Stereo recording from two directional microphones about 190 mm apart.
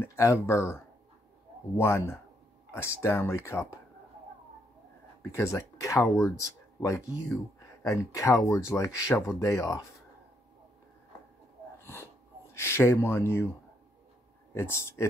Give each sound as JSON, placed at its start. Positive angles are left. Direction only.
{"t": 0.0, "sound": "speech", "side_deg": 15}
{"t": 1.8, "sound": "speech", "side_deg": 15}
{"t": 5.3, "sound": "speech", "side_deg": 15}
{"t": 11.8, "sound": "wheeze", "side_deg": 10}
{"t": 12.5, "sound": "speech", "side_deg": 15}
{"t": 14.5, "sound": "speech", "side_deg": 15}